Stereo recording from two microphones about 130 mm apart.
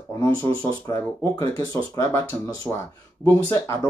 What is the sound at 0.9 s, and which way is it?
Speech, 30° left (ahead or behind).